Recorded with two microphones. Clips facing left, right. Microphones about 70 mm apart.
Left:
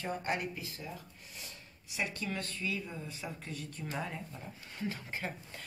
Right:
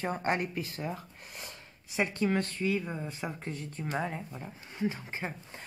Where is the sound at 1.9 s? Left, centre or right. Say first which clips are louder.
Right 8 dB; right.